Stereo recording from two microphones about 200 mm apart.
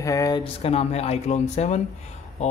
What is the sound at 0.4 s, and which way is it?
Speech, 30° left (ahead or behind).